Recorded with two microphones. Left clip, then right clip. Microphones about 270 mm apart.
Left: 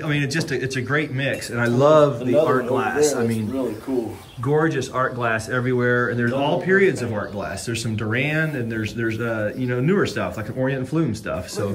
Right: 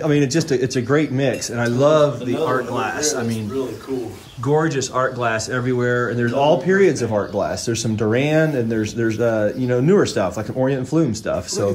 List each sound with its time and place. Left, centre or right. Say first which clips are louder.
0.0 s speech: right 6 dB; centre
1.6 s speech: even; centre
4.5 s speech: right 2 dB; centre